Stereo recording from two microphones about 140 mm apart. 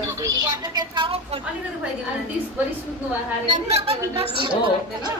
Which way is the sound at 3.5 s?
45° right (ahead or behind).